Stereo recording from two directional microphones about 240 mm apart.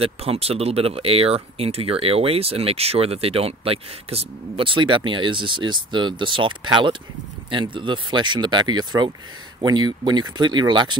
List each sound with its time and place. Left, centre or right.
0.0 s speech: right